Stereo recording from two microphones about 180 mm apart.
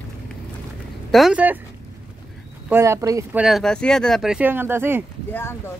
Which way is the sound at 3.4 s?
Centre (ahead or behind).